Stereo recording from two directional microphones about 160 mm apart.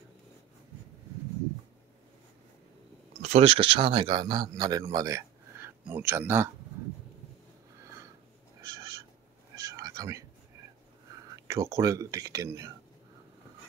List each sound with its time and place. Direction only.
3.1 s speech: 40° right (ahead or behind); by 6.5 s 15° right (ahead or behind)
8.5 s cat: 20° right (ahead or behind)
9.6 s whispering: 20° right (ahead or behind)
11.3 s speech: 20° right (ahead or behind)